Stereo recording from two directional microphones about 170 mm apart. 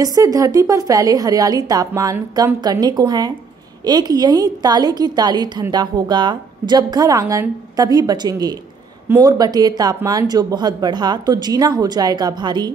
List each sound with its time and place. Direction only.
0.0 s a woman's voice: 20° right (ahead or behind)